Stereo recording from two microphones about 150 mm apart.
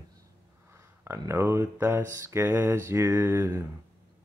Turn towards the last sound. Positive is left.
turn(degrees=-15)  # may be behind; listen again after turning